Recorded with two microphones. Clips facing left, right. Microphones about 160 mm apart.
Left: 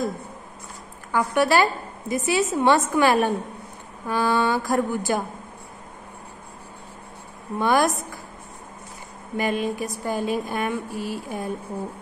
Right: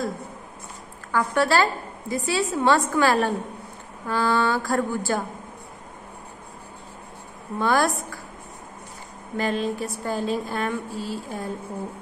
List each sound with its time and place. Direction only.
1.1 s a woman's voice: 15° left (ahead or behind)
7.5 s speech: 15° left (ahead or behind)
9.4 s speech: 15° left (ahead or behind)